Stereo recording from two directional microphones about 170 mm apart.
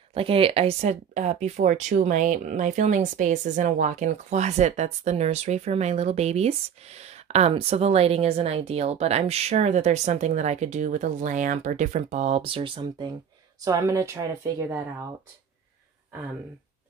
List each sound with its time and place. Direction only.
0.1 s speech: 35° right (ahead or behind)
13.7 s speech: 20° right (ahead or behind)